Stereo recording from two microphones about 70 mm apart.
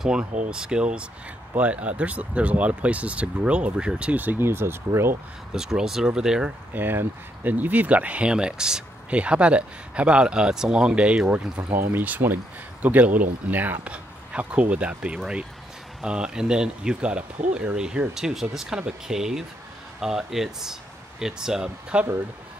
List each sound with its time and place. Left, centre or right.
0.0 s speech: centre
4.2 s speech: right
5.5 s speech: centre
6.7 s speech: right; by 22.0 s centre